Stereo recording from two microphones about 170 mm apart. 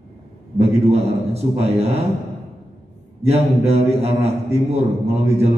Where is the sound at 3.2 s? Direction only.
40° right (ahead or behind).